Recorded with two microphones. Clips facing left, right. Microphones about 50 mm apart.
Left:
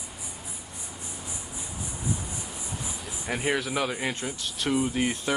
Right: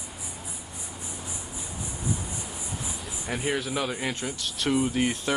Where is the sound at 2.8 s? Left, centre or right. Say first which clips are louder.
Even; centre.